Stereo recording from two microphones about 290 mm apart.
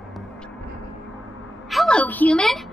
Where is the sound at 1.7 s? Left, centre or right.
Centre.